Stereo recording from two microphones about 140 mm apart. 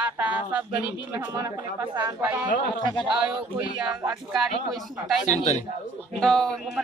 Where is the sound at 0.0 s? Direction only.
10° right (ahead or behind).